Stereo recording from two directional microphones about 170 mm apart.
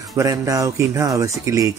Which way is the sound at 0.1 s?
20° right (ahead or behind).